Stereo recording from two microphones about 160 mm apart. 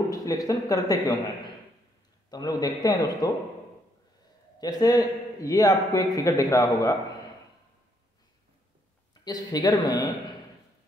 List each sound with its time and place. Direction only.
0.1 s speech: 20° left (ahead or behind)
2.3 s a man's voice: 25° left (ahead or behind)
4.6 s a man's voice: 25° left (ahead or behind)
9.2 s a man's voice: 25° left (ahead or behind)